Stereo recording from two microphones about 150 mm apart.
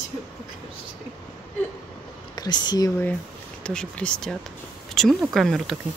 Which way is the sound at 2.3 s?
30° left (ahead or behind).